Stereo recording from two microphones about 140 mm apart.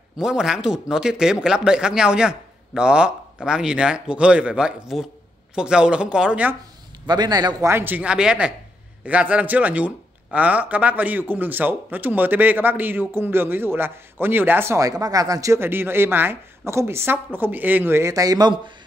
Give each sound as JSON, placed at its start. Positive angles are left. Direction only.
{"t": 0.2, "sound": "speech", "side_deg": -5}
{"t": 7.1, "sound": "a man's voice", "side_deg": -30}
{"t": 7.7, "sound": "speech", "side_deg": -15}